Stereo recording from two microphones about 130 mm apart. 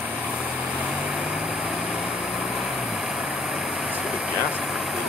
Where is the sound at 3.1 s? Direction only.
5° right (ahead or behind).